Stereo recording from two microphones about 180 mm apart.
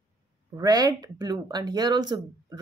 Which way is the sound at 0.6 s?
20° right (ahead or behind).